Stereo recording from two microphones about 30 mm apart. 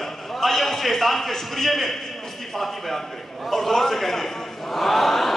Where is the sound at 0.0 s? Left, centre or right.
Centre.